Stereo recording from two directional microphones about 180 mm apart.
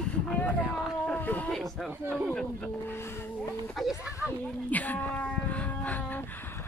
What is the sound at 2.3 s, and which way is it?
Speech, 10° left (ahead or behind).